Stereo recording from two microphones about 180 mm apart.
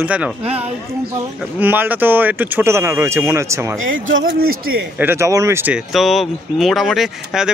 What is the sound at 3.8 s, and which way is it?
Speech, 90° right.